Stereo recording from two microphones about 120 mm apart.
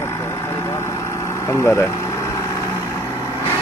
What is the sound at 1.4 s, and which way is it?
Speech, 20° left (ahead or behind).